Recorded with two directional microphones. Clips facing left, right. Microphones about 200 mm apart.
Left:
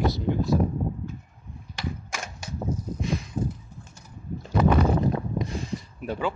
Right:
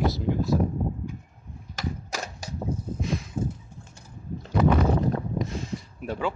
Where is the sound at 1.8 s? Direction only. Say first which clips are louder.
Right 1 dB; 35° right (ahead or behind).